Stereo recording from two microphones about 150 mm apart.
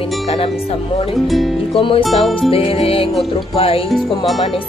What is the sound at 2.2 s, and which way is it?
Speech, 40° left (ahead or behind).